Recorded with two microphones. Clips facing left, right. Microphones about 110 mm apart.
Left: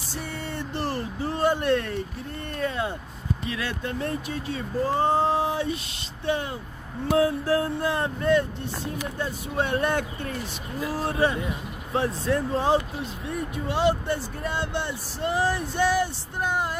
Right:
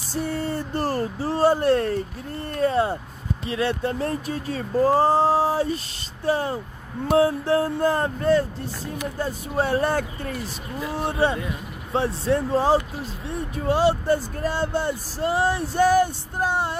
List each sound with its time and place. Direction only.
0.1 s speech: 40° right (ahead or behind)
7.1 s a sound: 30° right (ahead or behind)
7.8 s speech: 40° right (ahead or behind)